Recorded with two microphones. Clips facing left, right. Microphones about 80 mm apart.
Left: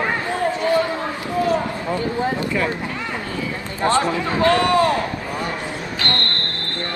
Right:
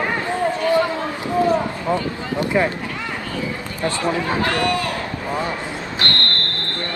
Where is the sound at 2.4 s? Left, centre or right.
Right.